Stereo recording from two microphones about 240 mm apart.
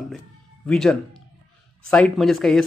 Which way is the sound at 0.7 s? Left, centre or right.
Centre.